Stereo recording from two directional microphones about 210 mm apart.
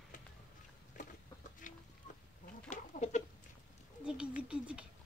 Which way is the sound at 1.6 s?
40° left (ahead or behind).